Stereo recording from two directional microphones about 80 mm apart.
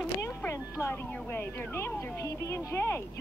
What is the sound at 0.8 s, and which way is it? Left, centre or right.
Speech, left.